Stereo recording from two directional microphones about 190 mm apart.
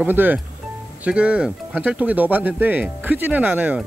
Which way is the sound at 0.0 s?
10° right (ahead or behind).